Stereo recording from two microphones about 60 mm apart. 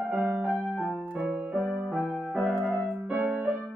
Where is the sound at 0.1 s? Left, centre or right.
Centre.